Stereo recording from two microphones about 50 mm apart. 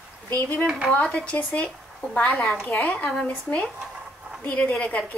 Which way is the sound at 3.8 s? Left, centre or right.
Right.